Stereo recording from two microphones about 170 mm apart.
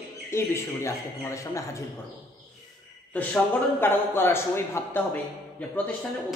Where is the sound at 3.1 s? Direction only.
10° left (ahead or behind).